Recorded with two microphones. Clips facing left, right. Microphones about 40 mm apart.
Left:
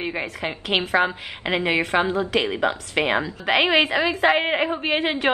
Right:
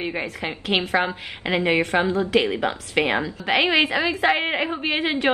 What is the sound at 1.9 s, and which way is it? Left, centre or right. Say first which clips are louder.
Mantra: left 3 dB; centre.